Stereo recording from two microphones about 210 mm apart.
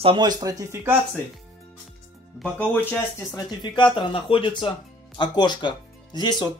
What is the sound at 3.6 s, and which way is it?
Speech, 25° left (ahead or behind).